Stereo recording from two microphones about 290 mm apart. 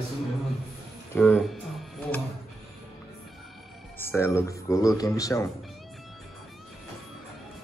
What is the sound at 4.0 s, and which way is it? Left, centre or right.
Speech, centre.